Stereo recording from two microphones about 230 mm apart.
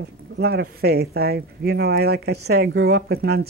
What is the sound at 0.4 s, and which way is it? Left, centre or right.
Speech, right.